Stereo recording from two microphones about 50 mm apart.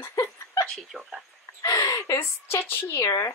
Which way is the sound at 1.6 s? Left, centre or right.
Left.